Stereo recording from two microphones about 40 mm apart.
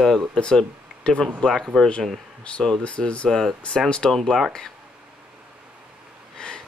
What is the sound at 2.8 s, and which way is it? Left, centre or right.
Speech, left.